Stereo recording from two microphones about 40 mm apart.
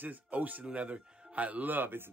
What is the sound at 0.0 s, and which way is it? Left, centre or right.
A man's voice, right.